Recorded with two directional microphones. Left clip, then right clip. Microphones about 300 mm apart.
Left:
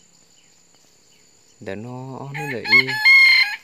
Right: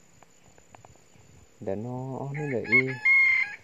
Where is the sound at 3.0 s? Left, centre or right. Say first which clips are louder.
Left 10 dB; right.